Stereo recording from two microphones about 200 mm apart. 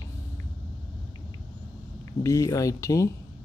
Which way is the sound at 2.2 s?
15° left (ahead or behind).